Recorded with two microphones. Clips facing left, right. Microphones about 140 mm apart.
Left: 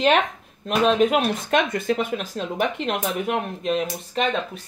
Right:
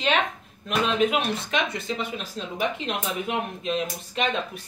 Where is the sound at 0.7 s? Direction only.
45° left (ahead or behind).